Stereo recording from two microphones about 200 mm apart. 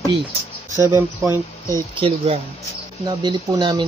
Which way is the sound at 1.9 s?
30° right (ahead or behind).